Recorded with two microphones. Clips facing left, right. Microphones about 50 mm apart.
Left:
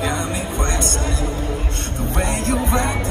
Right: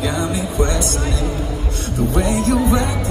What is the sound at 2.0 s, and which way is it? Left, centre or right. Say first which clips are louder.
Music: right 5 dB; left.